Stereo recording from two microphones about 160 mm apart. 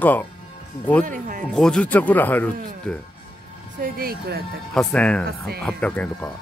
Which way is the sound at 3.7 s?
70° right (ahead or behind).